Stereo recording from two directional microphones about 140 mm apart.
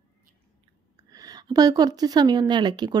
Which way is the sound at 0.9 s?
25° right (ahead or behind).